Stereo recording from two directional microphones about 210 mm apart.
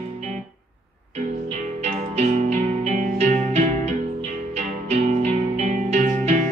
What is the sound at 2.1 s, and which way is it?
Music, 35° right (ahead or behind).